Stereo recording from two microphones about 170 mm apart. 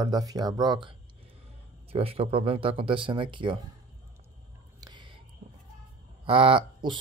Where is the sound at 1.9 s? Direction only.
35° right (ahead or behind).